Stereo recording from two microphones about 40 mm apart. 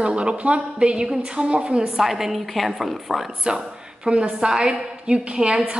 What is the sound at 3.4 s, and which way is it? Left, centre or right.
A woman's voice, right.